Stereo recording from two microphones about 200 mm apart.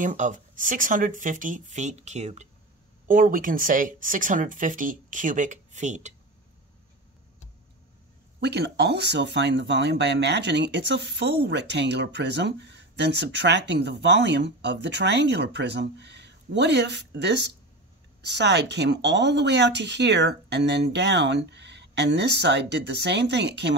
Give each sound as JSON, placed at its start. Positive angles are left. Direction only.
{"t": 0.0, "sound": "speech", "side_deg": -40}
{"t": 8.4, "sound": "speech", "side_deg": -60}